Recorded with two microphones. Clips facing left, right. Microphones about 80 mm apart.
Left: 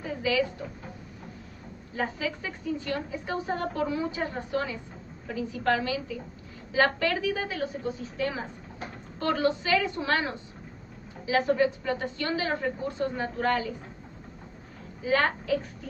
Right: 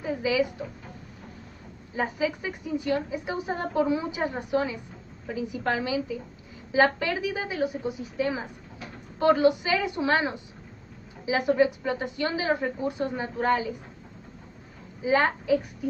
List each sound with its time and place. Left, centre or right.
0.0 s music: centre
2.0 s a woman's voice: centre
15.0 s a woman's voice: centre